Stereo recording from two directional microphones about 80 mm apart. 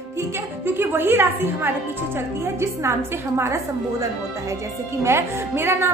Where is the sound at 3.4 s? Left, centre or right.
Right.